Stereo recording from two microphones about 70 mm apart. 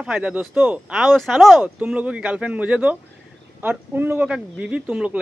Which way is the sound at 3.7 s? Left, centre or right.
Right.